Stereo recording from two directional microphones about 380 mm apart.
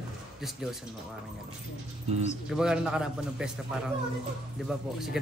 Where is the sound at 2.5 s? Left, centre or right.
Centre.